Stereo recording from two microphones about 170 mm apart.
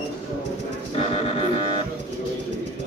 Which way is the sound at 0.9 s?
35° left (ahead or behind).